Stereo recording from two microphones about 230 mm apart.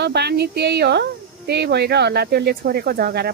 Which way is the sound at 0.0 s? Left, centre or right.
Right.